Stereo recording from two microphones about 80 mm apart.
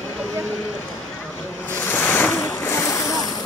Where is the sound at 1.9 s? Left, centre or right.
Left.